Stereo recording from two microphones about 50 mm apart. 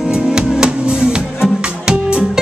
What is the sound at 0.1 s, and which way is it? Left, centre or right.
Music, centre.